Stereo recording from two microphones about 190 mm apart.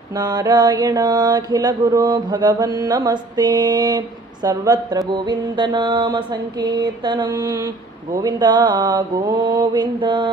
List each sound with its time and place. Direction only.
0.2 s mantra: 20° right (ahead or behind)